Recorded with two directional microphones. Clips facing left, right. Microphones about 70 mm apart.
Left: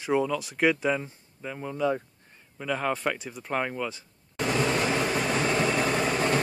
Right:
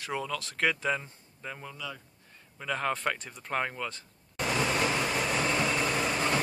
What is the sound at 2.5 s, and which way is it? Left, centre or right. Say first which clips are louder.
Speech: left 3 dB; centre.